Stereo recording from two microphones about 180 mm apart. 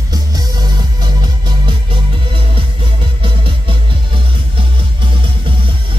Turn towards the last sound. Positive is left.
turn(degrees=-30)  # may be behind; listen again after turning